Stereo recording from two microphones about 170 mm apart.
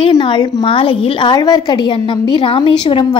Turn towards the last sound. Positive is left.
turn(degrees=30)  # may be behind; listen again after turning